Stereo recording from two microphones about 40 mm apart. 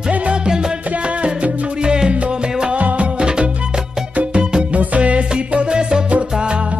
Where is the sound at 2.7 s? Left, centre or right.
Right.